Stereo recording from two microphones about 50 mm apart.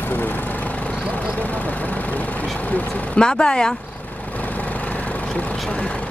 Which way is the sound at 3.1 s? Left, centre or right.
Centre.